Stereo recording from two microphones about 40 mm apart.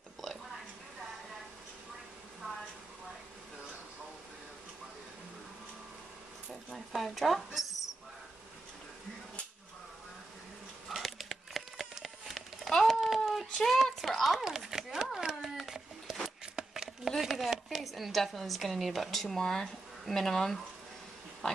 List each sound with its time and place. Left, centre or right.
7.0 s speech: centre
10.9 s a sound: centre
15.1 s cat: centre
16.5 s a sound: centre
17.2 s chopping: centre
17.6 s speech: centre